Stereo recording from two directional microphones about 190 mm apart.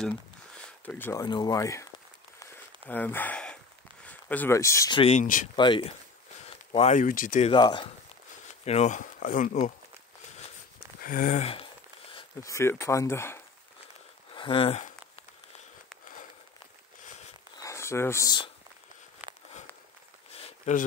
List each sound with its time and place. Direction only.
0.8 s speech: 10° left (ahead or behind)
1.2 s speech: 20° left (ahead or behind)
2.5 s a sound: 10° left (ahead or behind)
4.1 s speech: 10° left (ahead or behind)
5.0 s speech: 40° left (ahead or behind)
5.6 s speech: 25° left (ahead or behind)
7.5 s speech: 25° left (ahead or behind)
8.6 s speech: 35° left (ahead or behind)
11.0 s speech: 45° left (ahead or behind); by 13.4 s 15° left (ahead or behind)
14.3 s speech: 25° left (ahead or behind)
17.6 s a sound: 15° left (ahead or behind)
19.2 s a sound: 10° right (ahead or behind)
20.3 s a sound: 30° left (ahead or behind)